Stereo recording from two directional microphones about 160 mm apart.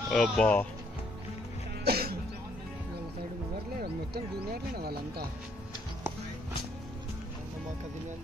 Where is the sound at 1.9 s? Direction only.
75° right (ahead or behind).